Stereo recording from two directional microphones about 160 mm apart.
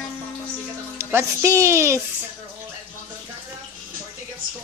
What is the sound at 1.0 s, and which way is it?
A woman's voice, 15° right (ahead or behind).